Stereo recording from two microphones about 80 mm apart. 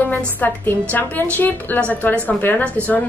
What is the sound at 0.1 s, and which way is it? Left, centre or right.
A woman's voice, left.